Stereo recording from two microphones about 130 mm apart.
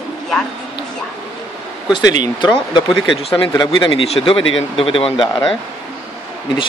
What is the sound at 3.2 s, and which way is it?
Speech, 40° left (ahead or behind).